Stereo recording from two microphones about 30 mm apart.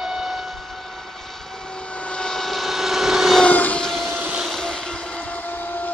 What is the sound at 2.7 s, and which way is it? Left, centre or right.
Vehicle, centre.